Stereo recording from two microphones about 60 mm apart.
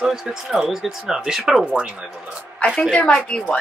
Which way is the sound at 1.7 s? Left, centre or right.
Centre.